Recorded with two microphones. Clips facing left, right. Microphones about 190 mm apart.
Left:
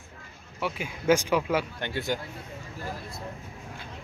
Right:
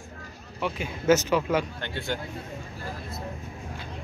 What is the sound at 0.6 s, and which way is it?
Speech, 10° left (ahead or behind).